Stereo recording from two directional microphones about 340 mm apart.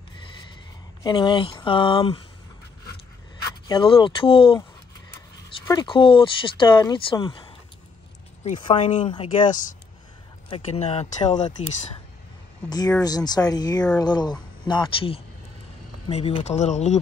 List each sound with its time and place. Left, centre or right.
1.0 s speech: centre
3.6 s speech: centre
5.7 s speech: centre
12.6 s speech: centre